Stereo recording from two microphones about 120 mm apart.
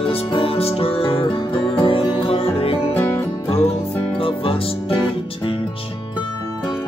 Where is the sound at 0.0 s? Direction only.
50° left (ahead or behind).